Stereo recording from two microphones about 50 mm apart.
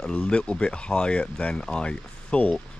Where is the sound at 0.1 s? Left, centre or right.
Centre.